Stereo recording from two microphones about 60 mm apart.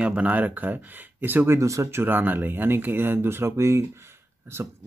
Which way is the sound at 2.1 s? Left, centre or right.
Right.